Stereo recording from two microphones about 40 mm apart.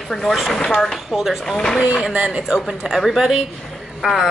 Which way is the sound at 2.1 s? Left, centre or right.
Right.